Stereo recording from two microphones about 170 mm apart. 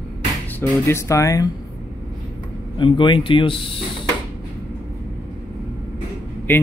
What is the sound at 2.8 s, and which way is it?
Speech, 30° left (ahead or behind).